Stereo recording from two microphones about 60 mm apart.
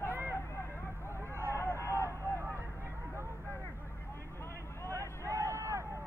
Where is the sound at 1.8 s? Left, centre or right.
Left.